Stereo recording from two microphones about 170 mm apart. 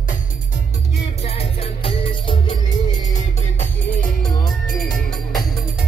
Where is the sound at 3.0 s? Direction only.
45° left (ahead or behind).